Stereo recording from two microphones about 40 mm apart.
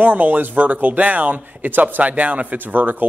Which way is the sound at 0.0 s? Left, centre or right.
Right.